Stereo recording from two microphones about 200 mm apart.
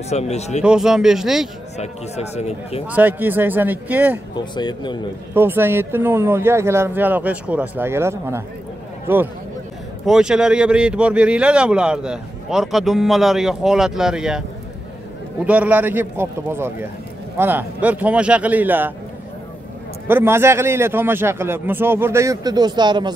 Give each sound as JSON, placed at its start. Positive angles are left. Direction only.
{"t": 0.1, "sound": "speech", "side_deg": 35}
{"t": 0.7, "sound": "speech", "side_deg": -5}
{"t": 1.8, "sound": "speech", "side_deg": 35}
{"t": 2.9, "sound": "speech", "side_deg": -10}
{"t": 4.6, "sound": "speech", "side_deg": 20}
{"t": 5.3, "sound": "speech", "side_deg": -10}
{"t": 15.4, "sound": "speech", "side_deg": -5}
{"t": 20.1, "sound": "speech", "side_deg": -10}